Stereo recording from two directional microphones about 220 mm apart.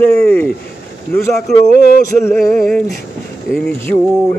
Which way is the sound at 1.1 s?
40° left (ahead or behind).